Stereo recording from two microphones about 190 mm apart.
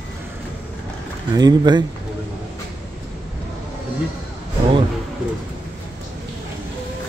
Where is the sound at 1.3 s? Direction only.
20° right (ahead or behind).